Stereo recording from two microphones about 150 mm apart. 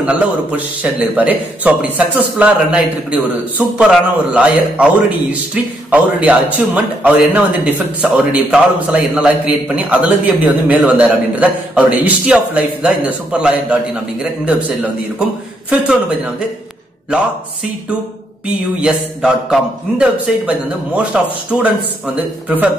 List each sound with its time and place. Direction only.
0.0 s a man's voice: 10° right (ahead or behind)
18.8 s a man's voice: 5° right (ahead or behind)